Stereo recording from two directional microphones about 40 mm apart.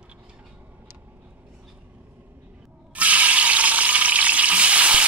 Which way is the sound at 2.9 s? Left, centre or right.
Right.